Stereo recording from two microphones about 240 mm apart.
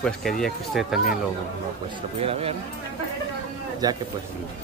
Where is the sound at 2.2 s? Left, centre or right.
Right.